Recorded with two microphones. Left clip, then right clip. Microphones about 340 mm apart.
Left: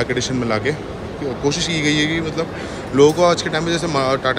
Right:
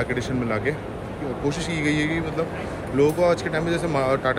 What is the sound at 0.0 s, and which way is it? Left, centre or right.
Speech, centre.